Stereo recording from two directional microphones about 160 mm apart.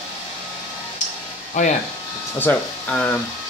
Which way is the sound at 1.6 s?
50° left (ahead or behind).